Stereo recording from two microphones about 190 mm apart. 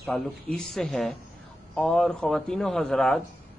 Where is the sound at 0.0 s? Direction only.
Centre (ahead or behind).